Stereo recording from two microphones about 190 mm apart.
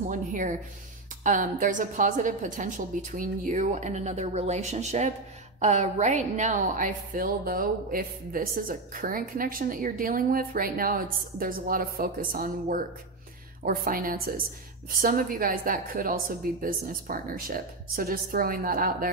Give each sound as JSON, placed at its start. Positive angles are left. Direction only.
{"t": 0.1, "sound": "a woman's voice", "side_deg": -40}